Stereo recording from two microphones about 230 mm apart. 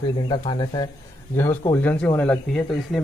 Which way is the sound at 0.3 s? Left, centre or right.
Centre.